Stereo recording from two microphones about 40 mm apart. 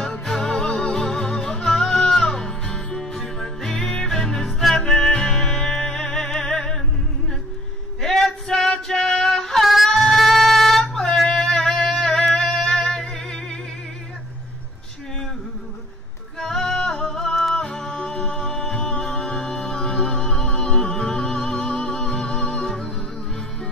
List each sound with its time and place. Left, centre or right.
0.0 s music: centre
8.0 s male singing: centre
8.6 s music: centre
9.9 s female singing: centre
12.4 s singing: centre
12.9 s music: centre
16.3 s music: centre